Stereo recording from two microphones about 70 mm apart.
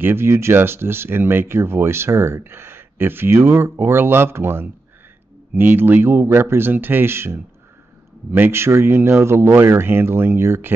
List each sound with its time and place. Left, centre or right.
0.0 s speech: right